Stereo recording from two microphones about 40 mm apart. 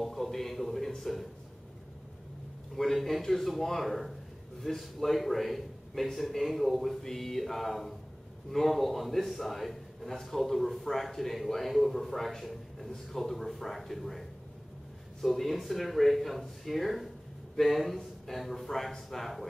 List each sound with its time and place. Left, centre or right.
0.0 s a man's voice: centre
2.7 s a man's voice: centre
15.2 s a man's voice: centre